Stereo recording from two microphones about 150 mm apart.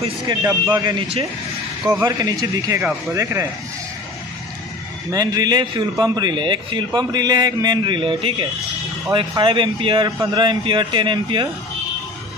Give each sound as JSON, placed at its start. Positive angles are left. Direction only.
{"t": 0.3, "sound": "a man's voice", "side_deg": -25}
{"t": 2.0, "sound": "a man's voice", "side_deg": -25}
{"t": 2.8, "sound": "speech", "side_deg": -5}
{"t": 3.2, "sound": "a man's voice", "side_deg": -20}
{"t": 5.1, "sound": "a man's voice", "side_deg": -25}